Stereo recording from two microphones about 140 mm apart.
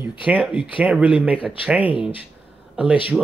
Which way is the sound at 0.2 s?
10° right (ahead or behind).